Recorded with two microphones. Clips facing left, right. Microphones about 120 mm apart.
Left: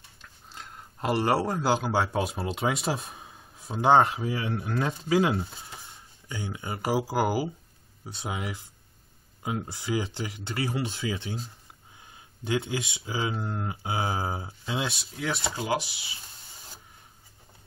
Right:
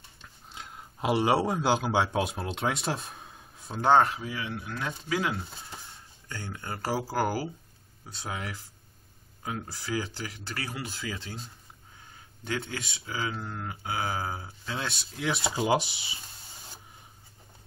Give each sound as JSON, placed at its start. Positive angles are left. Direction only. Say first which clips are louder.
{"t": 0.5, "sound": "speech", "louder": "even", "side_deg": 0}
{"t": 4.0, "sound": "speech", "louder": "left 2 dB", "side_deg": 25}
{"t": 6.2, "sound": "speech", "louder": "left 3 dB", "side_deg": 15}
{"t": 12.4, "sound": "speech", "louder": "left 5 dB", "side_deg": 25}
{"t": 14.8, "sound": "speech", "louder": "left 2 dB", "side_deg": 0}
{"t": 15.5, "sound": "speech", "louder": "right 3 dB", "side_deg": -25}